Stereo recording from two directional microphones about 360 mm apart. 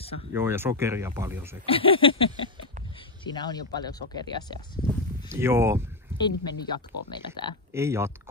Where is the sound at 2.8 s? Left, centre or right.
Centre.